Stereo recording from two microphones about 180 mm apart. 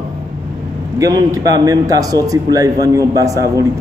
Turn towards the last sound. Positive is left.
turn(degrees=-20)  # may be behind; listen again after turning